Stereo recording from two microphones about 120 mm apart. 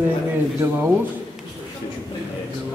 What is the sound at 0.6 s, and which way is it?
Speech, 25° right (ahead or behind).